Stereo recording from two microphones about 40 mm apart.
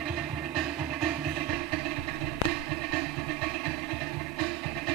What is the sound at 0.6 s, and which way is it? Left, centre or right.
Music, right.